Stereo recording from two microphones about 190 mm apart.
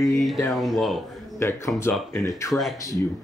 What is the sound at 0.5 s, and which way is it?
Speech, centre (ahead or behind).